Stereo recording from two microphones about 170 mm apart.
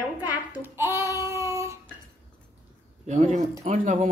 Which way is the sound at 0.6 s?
15° right (ahead or behind).